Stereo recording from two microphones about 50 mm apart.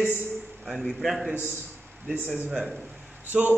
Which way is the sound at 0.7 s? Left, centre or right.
Centre.